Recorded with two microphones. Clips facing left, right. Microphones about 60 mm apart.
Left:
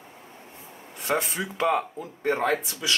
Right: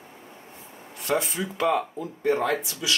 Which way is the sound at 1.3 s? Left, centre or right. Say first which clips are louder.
Even; centre.